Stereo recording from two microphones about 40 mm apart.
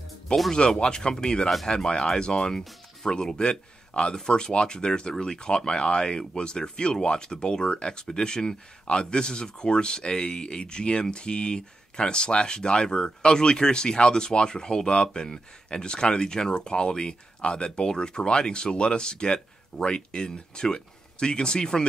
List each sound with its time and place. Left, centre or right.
0.5 s a man's voice: centre